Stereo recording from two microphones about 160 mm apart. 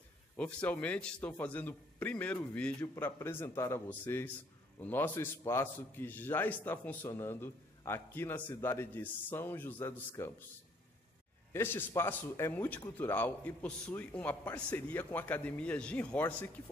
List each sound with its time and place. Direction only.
0.4 s a man's voice: 10° left (ahead or behind)
11.5 s a man's voice: 15° left (ahead or behind)